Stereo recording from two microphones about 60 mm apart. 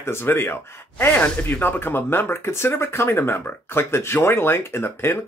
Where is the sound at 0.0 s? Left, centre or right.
Left.